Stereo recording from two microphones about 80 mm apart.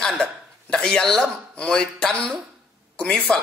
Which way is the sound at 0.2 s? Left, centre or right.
Centre.